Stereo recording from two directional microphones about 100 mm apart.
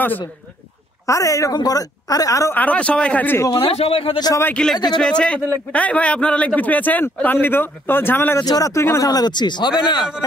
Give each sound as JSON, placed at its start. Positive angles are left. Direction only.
{"t": 1.0, "sound": "a woman's voice", "side_deg": 35}
{"t": 2.5, "sound": "a man's voice", "side_deg": 15}
{"t": 3.3, "sound": "speech", "side_deg": 30}
{"t": 3.6, "sound": "speech", "side_deg": 80}
{"t": 4.6, "sound": "a man's voice", "side_deg": 10}
{"t": 8.5, "sound": "speech", "side_deg": 35}